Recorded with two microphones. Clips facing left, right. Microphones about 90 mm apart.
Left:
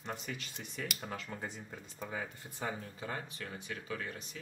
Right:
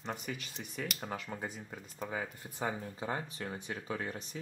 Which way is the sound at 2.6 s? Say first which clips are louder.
Right 3 dB; 20° right (ahead or behind).